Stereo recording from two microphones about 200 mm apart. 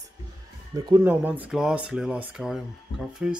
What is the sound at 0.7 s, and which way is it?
Speech, 15° right (ahead or behind).